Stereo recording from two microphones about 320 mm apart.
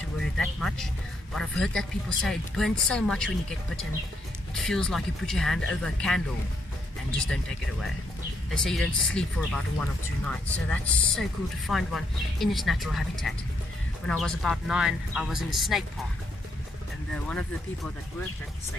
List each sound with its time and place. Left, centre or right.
0.4 s speech: centre
4.6 s speech: centre
8.5 s speech: centre
17.1 s speech: centre